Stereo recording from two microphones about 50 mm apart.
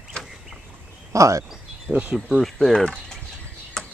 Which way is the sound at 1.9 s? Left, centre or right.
Right.